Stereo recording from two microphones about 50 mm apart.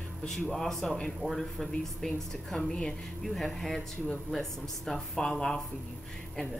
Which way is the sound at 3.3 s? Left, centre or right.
Centre.